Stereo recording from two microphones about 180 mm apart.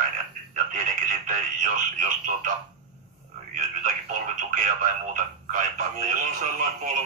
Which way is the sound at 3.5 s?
45° right (ahead or behind).